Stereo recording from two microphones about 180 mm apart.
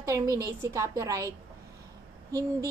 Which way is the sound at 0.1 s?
15° right (ahead or behind).